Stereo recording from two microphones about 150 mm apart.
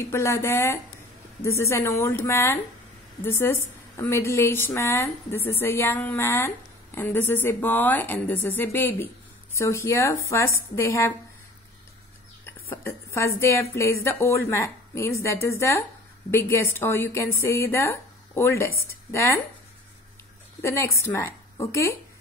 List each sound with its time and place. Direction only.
0.0 s a woman's voice: 20° left (ahead or behind)
12.4 s a woman's voice: 15° left (ahead or behind)
20.6 s a woman's voice: 20° left (ahead or behind)